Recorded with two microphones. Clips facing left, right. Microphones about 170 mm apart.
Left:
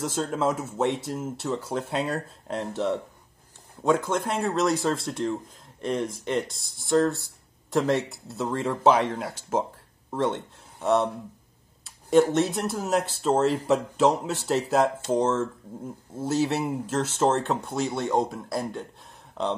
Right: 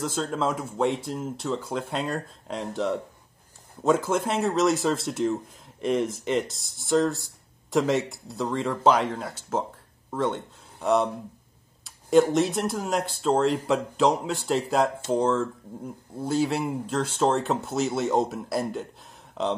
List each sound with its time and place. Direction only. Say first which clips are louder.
0.0 s a man's voice: left 1 dB; 5° left (ahead or behind)